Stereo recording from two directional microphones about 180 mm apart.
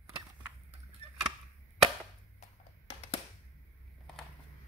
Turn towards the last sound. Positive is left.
turn(degrees=35)  # may be behind; listen again after turning